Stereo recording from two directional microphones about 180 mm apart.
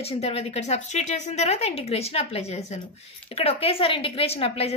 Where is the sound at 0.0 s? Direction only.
35° left (ahead or behind).